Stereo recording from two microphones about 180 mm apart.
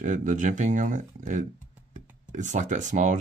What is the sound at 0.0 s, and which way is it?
Speech, 45° right (ahead or behind).